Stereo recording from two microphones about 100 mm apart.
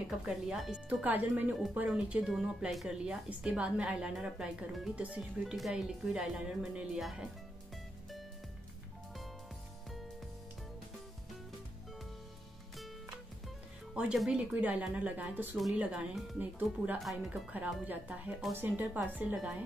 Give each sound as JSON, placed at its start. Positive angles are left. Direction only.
{"t": 0.1, "sound": "speech", "side_deg": -5}
{"t": 5.4, "sound": "speech", "side_deg": 0}
{"t": 13.9, "sound": "speech", "side_deg": -5}
{"t": 15.5, "sound": "speech", "side_deg": -5}
{"t": 15.8, "sound": "speech", "side_deg": -15}
{"t": 17.0, "sound": "speech", "side_deg": 0}
{"t": 17.8, "sound": "speech", "side_deg": -15}